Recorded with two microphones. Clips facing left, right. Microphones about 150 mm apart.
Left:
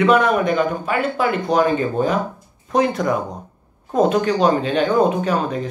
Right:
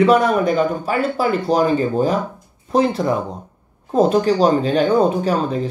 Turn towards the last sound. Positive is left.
turn(degrees=-35)  # may be behind; listen again after turning